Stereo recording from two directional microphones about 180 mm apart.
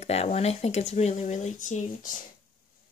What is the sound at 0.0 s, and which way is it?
Speech, 35° left (ahead or behind).